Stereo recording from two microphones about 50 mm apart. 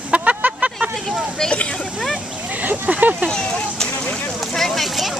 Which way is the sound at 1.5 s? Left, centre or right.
Left.